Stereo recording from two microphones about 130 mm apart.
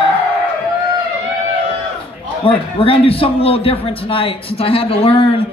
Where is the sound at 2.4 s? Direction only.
45° left (ahead or behind).